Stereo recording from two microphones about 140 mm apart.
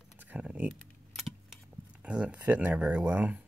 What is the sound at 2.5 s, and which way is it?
Speech, 10° right (ahead or behind).